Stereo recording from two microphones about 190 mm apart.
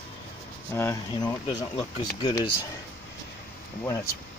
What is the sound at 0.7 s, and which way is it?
Speech, 15° left (ahead or behind).